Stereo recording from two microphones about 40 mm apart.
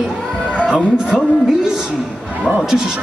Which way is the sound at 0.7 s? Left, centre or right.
Centre.